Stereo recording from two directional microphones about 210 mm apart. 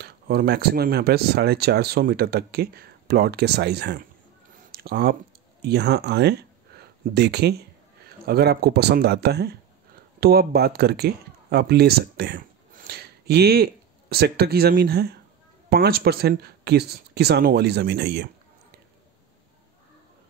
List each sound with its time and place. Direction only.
0.0 s speech: 45° right (ahead or behind)
4.6 s a sound: 45° right (ahead or behind)
5.6 s speech: 50° right (ahead or behind)